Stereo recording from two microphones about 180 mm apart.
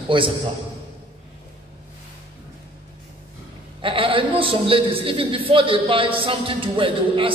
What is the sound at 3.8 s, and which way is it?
A man's voice, 30° right (ahead or behind).